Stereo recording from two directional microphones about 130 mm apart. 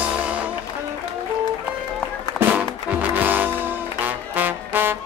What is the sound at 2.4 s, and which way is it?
Music, 10° right (ahead or behind).